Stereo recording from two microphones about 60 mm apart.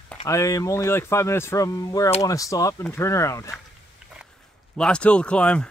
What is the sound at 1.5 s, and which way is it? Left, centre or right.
Speech, left.